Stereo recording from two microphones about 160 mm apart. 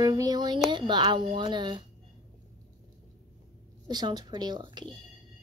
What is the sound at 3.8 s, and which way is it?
A child's voice, 25° right (ahead or behind).